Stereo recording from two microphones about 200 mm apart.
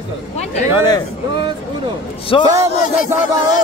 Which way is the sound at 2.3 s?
25° left (ahead or behind).